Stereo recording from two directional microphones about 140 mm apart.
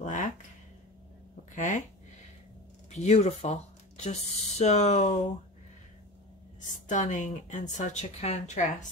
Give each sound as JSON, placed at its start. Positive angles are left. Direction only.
{"t": 0.0, "sound": "a sound", "side_deg": 65}
{"t": 1.5, "sound": "speech", "side_deg": 60}
{"t": 2.9, "sound": "speech", "side_deg": 55}
{"t": 6.9, "sound": "speech", "side_deg": 60}